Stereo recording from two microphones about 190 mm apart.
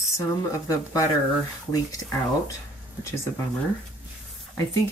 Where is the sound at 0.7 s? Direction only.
15° left (ahead or behind).